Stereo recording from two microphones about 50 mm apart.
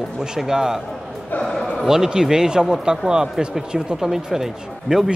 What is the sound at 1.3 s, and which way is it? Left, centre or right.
Speech, left.